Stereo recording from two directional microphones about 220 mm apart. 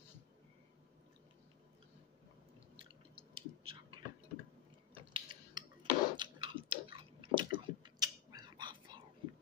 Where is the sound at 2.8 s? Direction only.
25° right (ahead or behind).